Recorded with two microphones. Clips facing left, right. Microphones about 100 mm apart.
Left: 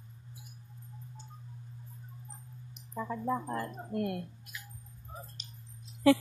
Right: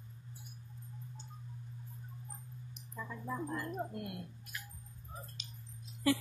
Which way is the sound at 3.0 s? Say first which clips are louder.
Left 7 dB; 45° left (ahead or behind).